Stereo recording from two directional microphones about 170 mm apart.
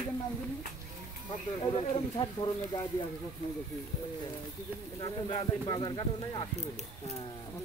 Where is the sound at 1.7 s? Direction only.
30° left (ahead or behind).